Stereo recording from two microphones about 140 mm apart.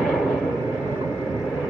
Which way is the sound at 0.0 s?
5° right (ahead or behind).